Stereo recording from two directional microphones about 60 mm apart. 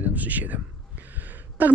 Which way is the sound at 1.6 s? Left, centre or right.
Right.